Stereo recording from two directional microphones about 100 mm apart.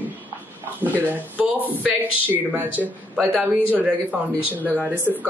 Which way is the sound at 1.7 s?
20° right (ahead or behind).